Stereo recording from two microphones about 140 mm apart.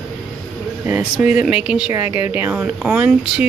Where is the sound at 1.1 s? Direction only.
5° right (ahead or behind).